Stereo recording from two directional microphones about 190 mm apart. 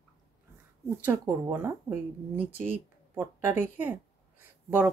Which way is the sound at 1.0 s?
15° right (ahead or behind).